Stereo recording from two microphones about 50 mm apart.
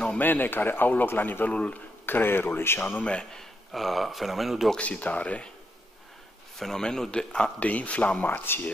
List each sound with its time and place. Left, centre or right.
0.2 s speech: left
1.5 s speech: left
2.0 s speech: left
3.0 s speech: left
3.7 s speech: centre
4.7 s speech: left
6.6 s a man's voice: centre
7.6 s speech: left
8.3 s speech: left